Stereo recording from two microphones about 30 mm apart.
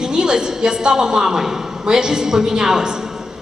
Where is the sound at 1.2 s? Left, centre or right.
Centre.